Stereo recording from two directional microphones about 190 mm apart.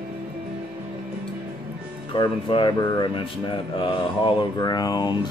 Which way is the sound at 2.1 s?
25° left (ahead or behind).